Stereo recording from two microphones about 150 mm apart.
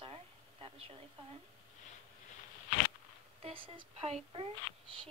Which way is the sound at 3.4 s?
35° right (ahead or behind).